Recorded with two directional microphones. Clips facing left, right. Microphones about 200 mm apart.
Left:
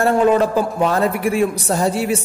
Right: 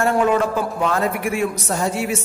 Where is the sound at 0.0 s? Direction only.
35° left (ahead or behind).